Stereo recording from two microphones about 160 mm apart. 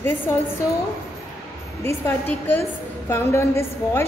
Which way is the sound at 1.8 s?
15° left (ahead or behind).